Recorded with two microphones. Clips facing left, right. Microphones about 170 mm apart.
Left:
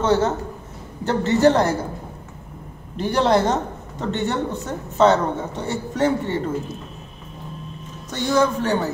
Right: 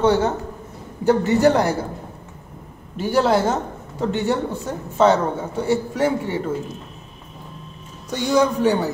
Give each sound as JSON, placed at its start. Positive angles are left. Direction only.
{"t": 0.0, "sound": "a woman's voice", "side_deg": -15}
{"t": 3.0, "sound": "a woman's voice", "side_deg": -5}
{"t": 8.1, "sound": "a woman's voice", "side_deg": -15}